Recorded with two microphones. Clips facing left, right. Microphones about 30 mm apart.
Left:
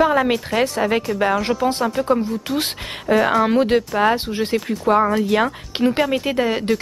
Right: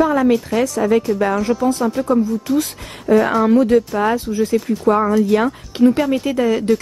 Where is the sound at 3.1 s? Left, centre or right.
Left.